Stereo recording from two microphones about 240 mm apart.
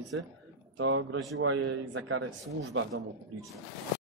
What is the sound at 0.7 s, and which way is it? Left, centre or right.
Speech, right.